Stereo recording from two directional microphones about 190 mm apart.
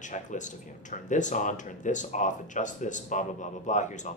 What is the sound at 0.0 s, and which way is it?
Speech, 40° left (ahead or behind).